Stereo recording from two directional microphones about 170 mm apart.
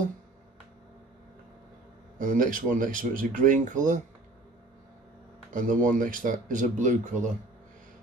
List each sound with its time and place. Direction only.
2.1 s speech: 50° right (ahead or behind)
5.5 s speech: 50° right (ahead or behind)